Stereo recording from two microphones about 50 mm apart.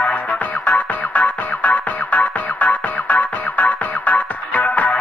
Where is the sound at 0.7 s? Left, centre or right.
Left.